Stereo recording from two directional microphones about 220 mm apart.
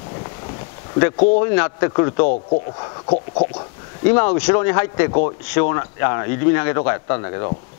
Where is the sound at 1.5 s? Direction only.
20° left (ahead or behind).